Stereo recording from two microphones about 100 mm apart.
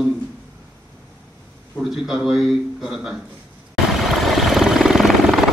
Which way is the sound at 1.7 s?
5° right (ahead or behind).